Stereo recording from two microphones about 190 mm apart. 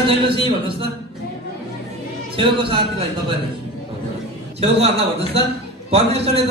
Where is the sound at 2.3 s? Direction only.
25° right (ahead or behind).